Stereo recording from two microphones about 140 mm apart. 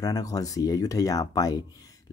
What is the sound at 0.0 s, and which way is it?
Speech, 25° left (ahead or behind).